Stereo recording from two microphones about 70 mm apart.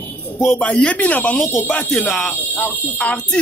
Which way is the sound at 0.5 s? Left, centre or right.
Centre.